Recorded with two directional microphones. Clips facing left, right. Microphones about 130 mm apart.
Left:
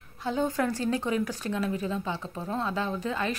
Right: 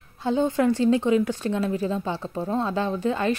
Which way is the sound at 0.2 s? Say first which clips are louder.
Right 6 dB; 25° right (ahead or behind).